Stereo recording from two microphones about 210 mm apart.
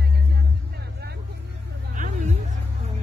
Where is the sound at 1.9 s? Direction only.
35° right (ahead or behind).